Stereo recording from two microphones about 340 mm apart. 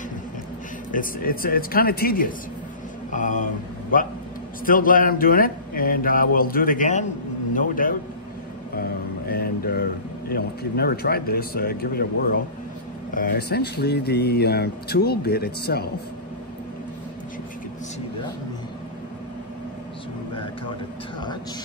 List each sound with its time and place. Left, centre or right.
0.9 s speech: left
4.6 s speech: left
9.3 s a sound: left
10.3 s speech: left